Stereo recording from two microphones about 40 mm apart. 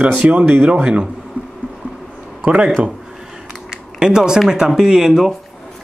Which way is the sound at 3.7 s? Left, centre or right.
Centre.